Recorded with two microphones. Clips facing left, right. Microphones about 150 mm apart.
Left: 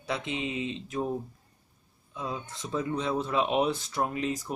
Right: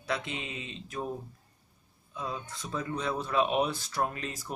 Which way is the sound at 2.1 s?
5° left (ahead or behind).